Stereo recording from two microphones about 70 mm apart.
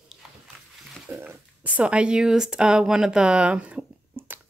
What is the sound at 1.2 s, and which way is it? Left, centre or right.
Speech, right.